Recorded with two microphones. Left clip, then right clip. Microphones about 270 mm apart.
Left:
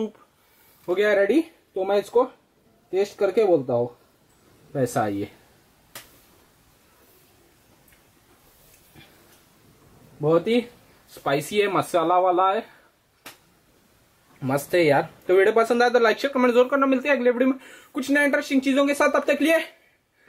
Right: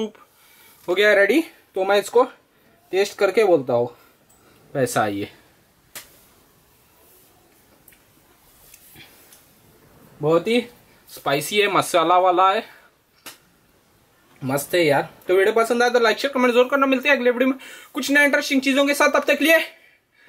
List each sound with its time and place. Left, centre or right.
0.8 s speech: centre; by 3.9 s left
4.7 s speech: centre
10.3 s speech: centre
14.4 s speech: centre